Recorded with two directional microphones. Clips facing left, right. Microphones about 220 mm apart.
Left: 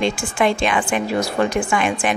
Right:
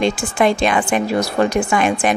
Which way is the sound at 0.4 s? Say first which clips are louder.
Right 3 dB; 40° right (ahead or behind).